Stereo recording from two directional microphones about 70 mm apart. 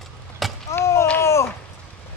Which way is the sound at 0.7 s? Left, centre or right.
Left.